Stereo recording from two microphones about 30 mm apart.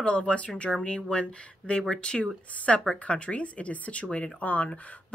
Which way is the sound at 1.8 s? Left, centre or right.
Left.